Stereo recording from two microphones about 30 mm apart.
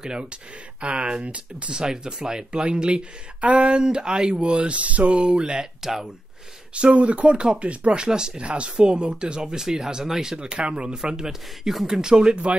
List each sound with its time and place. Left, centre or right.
0.0 s speech: right
0.7 s speech: right
1.2 s a sound: right
1.8 s speech: right
2.5 s speech: right
3.3 s a sound: right
3.8 s speech: right
4.6 s a sound: right
5.4 s speech: right
5.8 s speech: centre
6.7 s a sound: right
7.3 s speech: right
8.4 s speech: right
10.5 s speech: right